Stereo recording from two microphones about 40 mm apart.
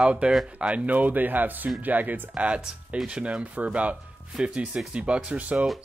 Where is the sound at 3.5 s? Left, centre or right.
Right.